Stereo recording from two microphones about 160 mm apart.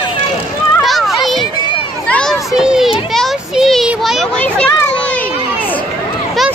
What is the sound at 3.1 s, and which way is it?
Child singing, centre (ahead or behind).